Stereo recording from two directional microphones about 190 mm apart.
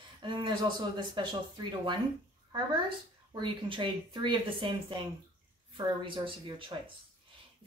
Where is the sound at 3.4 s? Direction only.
25° right (ahead or behind).